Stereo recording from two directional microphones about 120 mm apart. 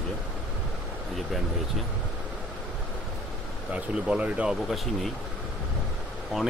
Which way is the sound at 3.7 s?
10° right (ahead or behind).